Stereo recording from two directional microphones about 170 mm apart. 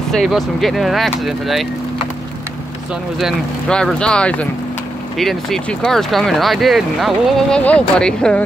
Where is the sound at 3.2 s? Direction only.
Centre (ahead or behind).